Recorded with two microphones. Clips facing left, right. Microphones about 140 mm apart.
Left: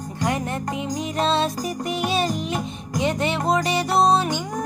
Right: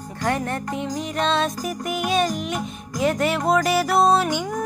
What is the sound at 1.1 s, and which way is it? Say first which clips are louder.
Music: left 1 dB; 35° left (ahead or behind).